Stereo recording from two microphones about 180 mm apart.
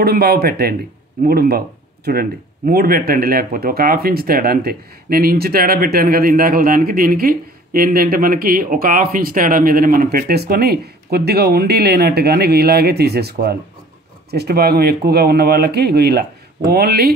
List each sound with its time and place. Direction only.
0.0 s speech: 60° right (ahead or behind)